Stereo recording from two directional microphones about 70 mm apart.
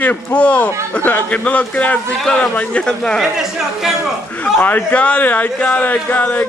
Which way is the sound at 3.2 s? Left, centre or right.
Centre.